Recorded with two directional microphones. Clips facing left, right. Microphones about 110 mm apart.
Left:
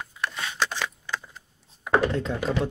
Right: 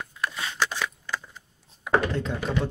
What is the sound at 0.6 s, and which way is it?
Computer keyboard, 5° right (ahead or behind).